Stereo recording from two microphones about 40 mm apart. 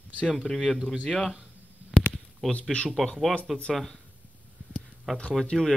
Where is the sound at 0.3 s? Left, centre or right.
Centre.